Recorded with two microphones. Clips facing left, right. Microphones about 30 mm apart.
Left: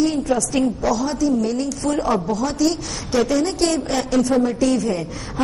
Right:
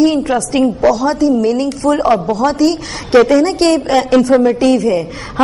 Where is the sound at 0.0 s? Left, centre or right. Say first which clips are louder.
Right 7 dB; right.